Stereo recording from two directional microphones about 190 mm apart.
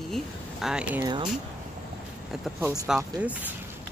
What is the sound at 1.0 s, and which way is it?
Speech, 25° right (ahead or behind).